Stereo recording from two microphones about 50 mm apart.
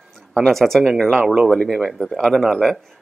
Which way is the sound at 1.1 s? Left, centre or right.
Centre.